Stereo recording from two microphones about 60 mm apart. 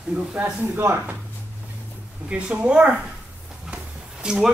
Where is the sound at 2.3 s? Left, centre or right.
Right.